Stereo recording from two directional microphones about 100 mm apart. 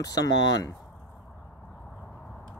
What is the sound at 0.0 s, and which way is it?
Speech, 40° left (ahead or behind).